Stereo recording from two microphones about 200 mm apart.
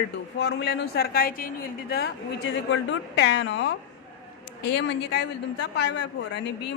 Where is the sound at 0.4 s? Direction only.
55° left (ahead or behind).